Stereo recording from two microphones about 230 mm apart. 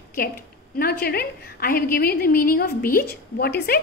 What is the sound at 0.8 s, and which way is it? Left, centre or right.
A woman's voice, left.